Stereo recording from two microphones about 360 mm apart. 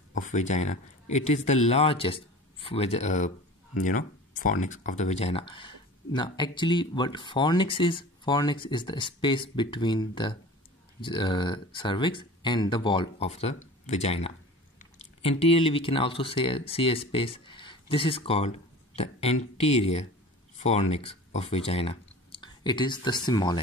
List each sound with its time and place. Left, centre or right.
0.1 s speech: left